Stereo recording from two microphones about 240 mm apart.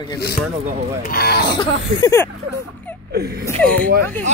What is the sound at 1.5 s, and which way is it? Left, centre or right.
Speech, centre.